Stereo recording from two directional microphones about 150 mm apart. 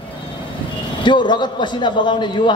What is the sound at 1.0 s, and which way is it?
A man's voice, 30° left (ahead or behind).